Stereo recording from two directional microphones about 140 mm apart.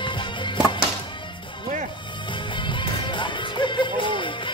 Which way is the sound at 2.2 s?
35° left (ahead or behind).